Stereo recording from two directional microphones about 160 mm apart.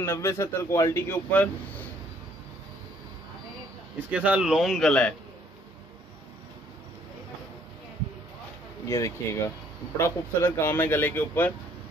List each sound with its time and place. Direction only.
0.0 s speech: 15° left (ahead or behind)
4.1 s speech: 10° right (ahead or behind)
8.8 s speech: 20° left (ahead or behind)